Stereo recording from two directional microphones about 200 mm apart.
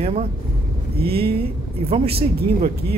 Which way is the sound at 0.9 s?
50° right (ahead or behind).